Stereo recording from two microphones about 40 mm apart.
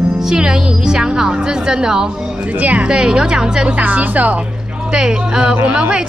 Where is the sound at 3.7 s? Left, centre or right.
Right.